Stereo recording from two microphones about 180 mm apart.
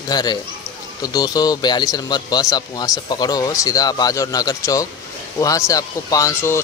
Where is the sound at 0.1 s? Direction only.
20° left (ahead or behind).